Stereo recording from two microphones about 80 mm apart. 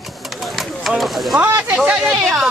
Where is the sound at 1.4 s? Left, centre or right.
Right.